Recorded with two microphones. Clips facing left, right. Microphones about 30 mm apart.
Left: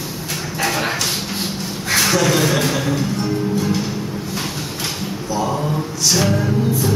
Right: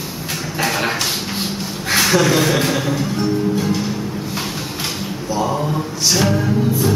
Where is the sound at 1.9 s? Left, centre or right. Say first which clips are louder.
Right 1 dB; centre.